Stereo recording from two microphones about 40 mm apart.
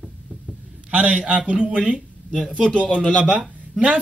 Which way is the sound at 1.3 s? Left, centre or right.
Right.